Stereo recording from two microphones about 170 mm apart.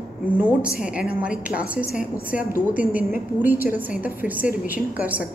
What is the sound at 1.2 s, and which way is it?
A woman's voice, 5° right (ahead or behind).